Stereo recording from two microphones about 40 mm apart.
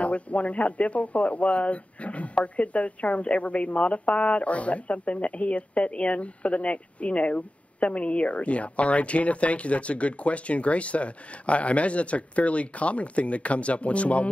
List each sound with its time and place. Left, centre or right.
0.0 s speech: left